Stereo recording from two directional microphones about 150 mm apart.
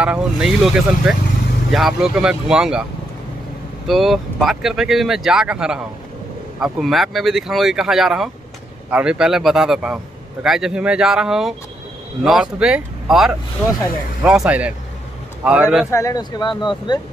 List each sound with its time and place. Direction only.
0.0 s speech: 5° right (ahead or behind)
3.8 s speech: centre (ahead or behind)
15.9 s speech: 20° left (ahead or behind)